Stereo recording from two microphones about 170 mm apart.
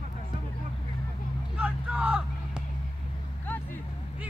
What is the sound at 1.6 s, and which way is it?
Vehicle, 5° right (ahead or behind).